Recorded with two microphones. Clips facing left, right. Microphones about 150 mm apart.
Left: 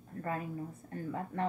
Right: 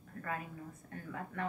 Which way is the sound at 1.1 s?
30° left (ahead or behind).